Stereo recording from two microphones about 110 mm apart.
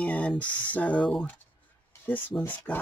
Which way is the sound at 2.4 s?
20° left (ahead or behind).